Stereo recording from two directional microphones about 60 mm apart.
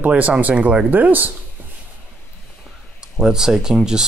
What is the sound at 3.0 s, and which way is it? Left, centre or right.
Speech, centre.